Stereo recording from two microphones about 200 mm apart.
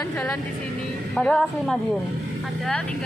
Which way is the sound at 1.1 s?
Centre (ahead or behind).